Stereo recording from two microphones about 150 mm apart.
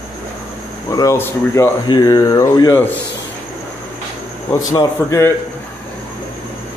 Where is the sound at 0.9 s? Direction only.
20° left (ahead or behind).